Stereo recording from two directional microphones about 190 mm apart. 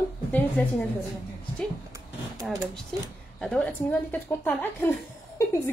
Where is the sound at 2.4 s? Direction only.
Centre (ahead or behind).